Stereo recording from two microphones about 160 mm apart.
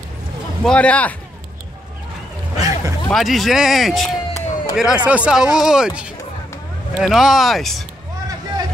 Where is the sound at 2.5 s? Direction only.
20° right (ahead or behind).